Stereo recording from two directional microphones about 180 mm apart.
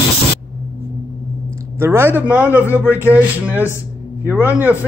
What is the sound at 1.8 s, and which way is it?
A man's voice, 10° right (ahead or behind).